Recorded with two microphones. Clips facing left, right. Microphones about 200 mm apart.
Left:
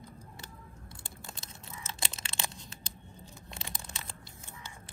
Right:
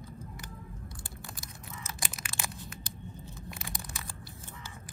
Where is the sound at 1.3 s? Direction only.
25° left (ahead or behind).